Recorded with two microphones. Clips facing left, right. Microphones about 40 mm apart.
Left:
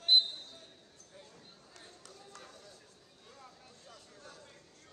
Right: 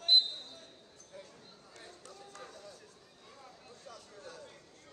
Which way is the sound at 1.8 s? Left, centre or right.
Right.